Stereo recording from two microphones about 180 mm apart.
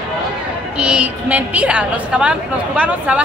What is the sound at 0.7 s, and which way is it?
A woman's voice, 5° right (ahead or behind).